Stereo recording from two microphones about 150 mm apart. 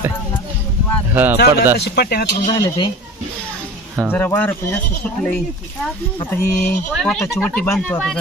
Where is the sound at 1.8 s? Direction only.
90° left.